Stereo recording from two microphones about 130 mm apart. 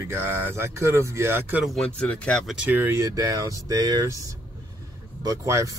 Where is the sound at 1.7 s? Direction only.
10° left (ahead or behind).